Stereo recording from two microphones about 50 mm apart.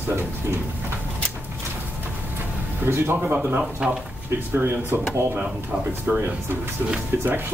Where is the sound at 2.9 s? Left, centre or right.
Right.